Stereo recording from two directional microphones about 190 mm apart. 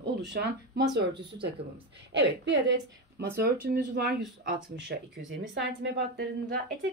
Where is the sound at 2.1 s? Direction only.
70° right (ahead or behind).